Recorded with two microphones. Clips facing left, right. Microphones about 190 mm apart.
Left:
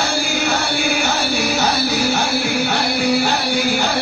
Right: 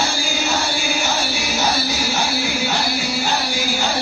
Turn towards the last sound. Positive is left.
turn(degrees=60)  # may be behind; listen again after turning